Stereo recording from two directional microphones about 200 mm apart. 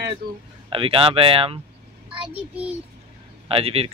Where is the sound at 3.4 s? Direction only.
30° right (ahead or behind).